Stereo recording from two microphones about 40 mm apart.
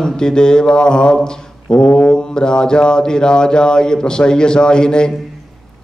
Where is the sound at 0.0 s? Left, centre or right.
Centre.